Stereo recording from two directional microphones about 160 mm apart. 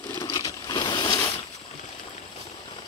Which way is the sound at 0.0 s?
20° left (ahead or behind).